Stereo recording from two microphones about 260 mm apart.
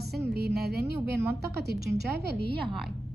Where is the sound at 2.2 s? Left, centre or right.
Right.